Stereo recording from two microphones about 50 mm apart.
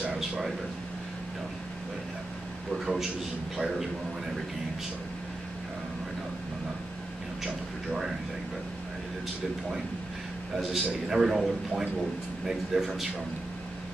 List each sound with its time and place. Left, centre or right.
0.1 s air conditioning: centre
2.8 s a man's voice: centre
7.4 s tick-tock: centre
10.6 s a man's voice: centre